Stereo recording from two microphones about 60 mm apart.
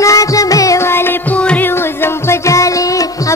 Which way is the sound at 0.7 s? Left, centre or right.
Left.